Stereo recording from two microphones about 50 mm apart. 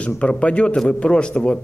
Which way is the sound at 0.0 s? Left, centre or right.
Left.